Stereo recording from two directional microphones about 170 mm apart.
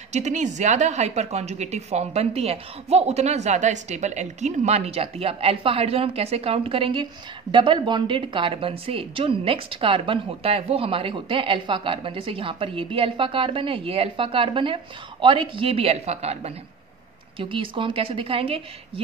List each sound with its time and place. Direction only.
0.1 s a woman's voice: 45° right (ahead or behind)